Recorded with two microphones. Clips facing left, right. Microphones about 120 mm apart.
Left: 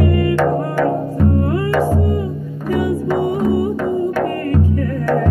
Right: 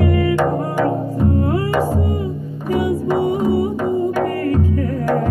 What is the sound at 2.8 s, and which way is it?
Music, 15° right (ahead or behind).